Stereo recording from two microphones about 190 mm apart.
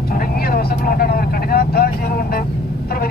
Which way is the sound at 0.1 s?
50° left (ahead or behind).